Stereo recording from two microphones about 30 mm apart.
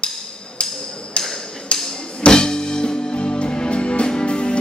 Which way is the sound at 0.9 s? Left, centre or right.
Left.